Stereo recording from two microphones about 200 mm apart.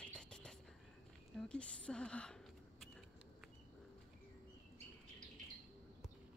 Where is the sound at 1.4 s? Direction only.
5° left (ahead or behind).